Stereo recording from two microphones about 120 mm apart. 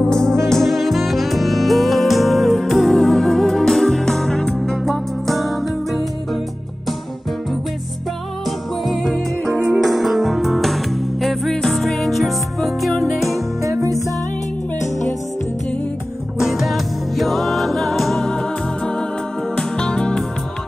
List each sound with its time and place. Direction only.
0.0 s music: 5° left (ahead or behind)
8.5 s music: centre (ahead or behind)
13.6 s music: 25° right (ahead or behind)
14.8 s music: 25° left (ahead or behind)
16.3 s music: centre (ahead or behind)
19.5 s music: 5° left (ahead or behind)